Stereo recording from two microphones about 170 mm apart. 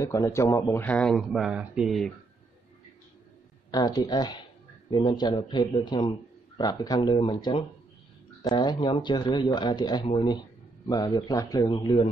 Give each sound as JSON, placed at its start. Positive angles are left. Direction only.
{"t": 0.0, "sound": "speech", "side_deg": 15}
{"t": 0.8, "sound": "speech", "side_deg": 5}
{"t": 3.7, "sound": "speech", "side_deg": 25}